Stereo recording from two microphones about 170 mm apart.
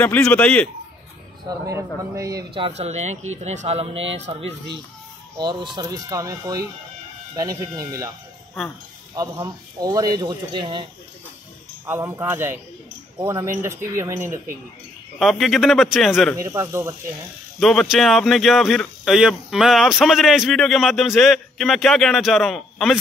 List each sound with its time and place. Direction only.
0.0 s a man's voice: 10° left (ahead or behind)
2.0 s speech: 20° right (ahead or behind)
2.8 s speech: 40° right (ahead or behind); by 8.1 s 20° right (ahead or behind)
9.1 s speech: 20° right (ahead or behind)
11.8 s speech: 15° right (ahead or behind)
15.1 s speech: centre (ahead or behind)
16.3 s speech: 15° right (ahead or behind)
17.6 s speech: centre (ahead or behind)